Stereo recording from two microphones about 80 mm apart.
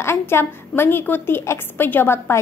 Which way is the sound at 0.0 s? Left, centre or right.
Left.